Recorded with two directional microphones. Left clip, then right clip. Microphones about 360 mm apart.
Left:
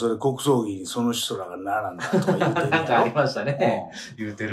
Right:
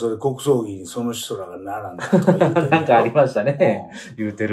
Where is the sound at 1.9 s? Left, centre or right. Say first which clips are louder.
Right 6 dB; centre.